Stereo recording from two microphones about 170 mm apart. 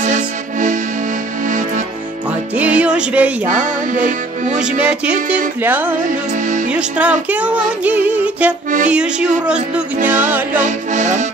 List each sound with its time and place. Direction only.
0.0 s music: 45° right (ahead or behind)
2.5 s music: 10° right (ahead or behind)
3.4 s music: 45° right (ahead or behind)
4.7 s music: 5° right (ahead or behind)
6.3 s music: 45° right (ahead or behind)
6.7 s music: 5° right (ahead or behind)
8.8 s speech: 5° right (ahead or behind)
10.6 s music: 45° right (ahead or behind)